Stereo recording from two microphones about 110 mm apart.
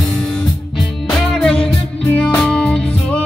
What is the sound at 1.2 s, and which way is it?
Music, 5° left (ahead or behind).